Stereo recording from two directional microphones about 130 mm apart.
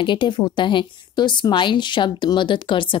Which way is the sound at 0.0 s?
35° left (ahead or behind).